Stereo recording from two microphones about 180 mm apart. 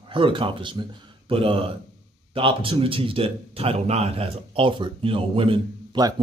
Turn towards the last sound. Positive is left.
turn(degrees=-25)  # may be behind; listen again after turning